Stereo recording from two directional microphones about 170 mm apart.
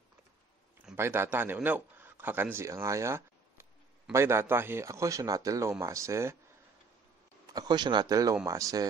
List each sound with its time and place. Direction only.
0.9 s a man's voice: 15° right (ahead or behind)
7.4 s speech: 25° right (ahead or behind)